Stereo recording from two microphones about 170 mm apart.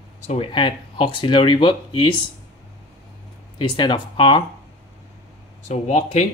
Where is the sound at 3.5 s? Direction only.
25° left (ahead or behind).